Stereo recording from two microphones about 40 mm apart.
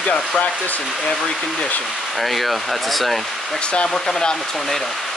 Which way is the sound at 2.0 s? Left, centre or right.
Centre.